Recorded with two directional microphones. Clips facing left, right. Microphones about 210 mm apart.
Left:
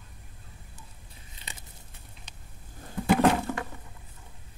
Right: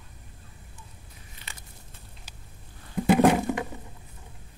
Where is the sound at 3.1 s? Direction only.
15° right (ahead or behind).